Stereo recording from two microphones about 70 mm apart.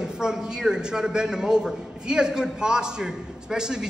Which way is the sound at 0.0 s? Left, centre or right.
Centre.